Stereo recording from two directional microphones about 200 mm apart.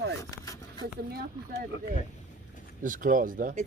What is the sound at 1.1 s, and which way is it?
Speech, 50° right (ahead or behind).